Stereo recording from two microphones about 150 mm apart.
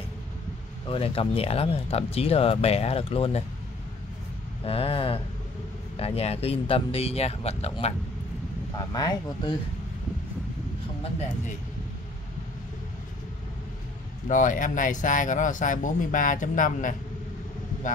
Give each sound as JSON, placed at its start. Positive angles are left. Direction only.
{"t": 0.8, "sound": "speech", "side_deg": 35}
{"t": 4.6, "sound": "speech", "side_deg": 40}
{"t": 8.7, "sound": "speech", "side_deg": 25}
{"t": 14.3, "sound": "speech", "side_deg": 60}